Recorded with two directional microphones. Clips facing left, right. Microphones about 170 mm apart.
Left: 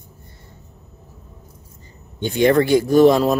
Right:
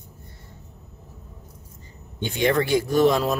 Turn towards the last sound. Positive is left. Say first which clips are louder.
# left 6 dB
turn(degrees=35)  # may be behind; listen again after turning